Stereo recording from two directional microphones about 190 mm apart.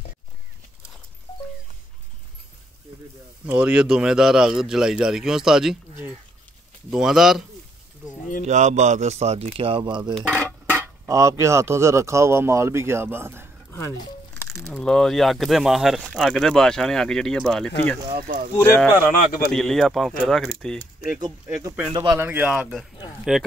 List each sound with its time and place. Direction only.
3.4 s speech: 5° right (ahead or behind)
8.5 s speech: 40° right (ahead or behind)
10.1 s dishes: 5° right (ahead or behind)
13.7 s speech: 15° left (ahead or behind)
14.5 s speech: centre (ahead or behind)
18.2 s speech: 50° right (ahead or behind)
18.6 s speech: 10° left (ahead or behind)
21.2 s speech: 15° right (ahead or behind)
22.2 s dishes: 10° right (ahead or behind)